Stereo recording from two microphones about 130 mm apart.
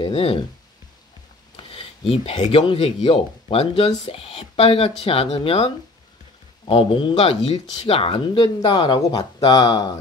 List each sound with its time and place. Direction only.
0.0 s speech: 45° left (ahead or behind)
1.6 s a sound: 45° left (ahead or behind)
2.6 s speech: 50° left (ahead or behind)
6.7 s speech: 45° left (ahead or behind)
8.6 s speech: 35° left (ahead or behind)